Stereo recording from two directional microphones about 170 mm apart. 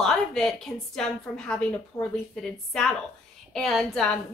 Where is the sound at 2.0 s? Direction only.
20° left (ahead or behind).